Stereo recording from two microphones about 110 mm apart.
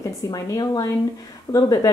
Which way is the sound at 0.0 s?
35° left (ahead or behind).